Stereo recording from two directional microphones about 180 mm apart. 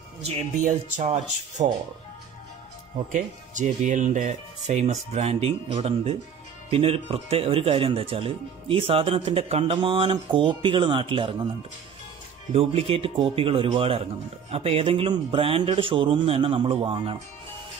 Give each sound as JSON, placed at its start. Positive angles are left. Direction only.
{"t": 0.2, "sound": "speech", "side_deg": -40}
{"t": 3.1, "sound": "speech", "side_deg": -45}
{"t": 12.5, "sound": "speech", "side_deg": -30}